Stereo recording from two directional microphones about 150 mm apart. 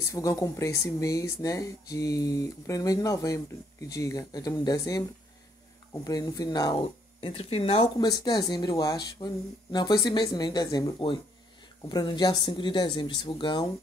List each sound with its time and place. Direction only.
0.0 s speech: 20° left (ahead or behind)
6.0 s speech: 25° left (ahead or behind); by 7.9 s 40° left (ahead or behind)
8.0 s speech: 30° left (ahead or behind)